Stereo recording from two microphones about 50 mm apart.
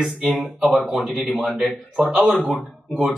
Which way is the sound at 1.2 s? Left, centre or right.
Centre.